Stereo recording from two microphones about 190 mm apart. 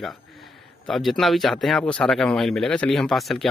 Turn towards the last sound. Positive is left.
turn(degrees=5)  # may be behind; listen again after turning